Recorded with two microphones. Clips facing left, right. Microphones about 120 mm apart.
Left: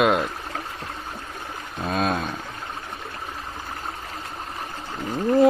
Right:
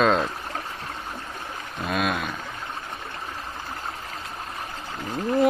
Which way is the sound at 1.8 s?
30° left (ahead or behind).